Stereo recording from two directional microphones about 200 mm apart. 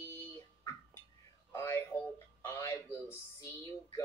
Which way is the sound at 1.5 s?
15° left (ahead or behind).